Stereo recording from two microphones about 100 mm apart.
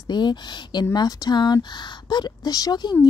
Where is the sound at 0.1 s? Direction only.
50° left (ahead or behind).